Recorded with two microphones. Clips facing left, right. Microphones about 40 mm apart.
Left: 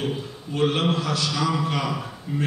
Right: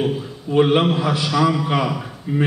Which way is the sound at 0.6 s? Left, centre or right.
Right.